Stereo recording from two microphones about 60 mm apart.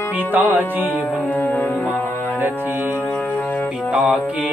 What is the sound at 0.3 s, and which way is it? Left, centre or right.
Music, right.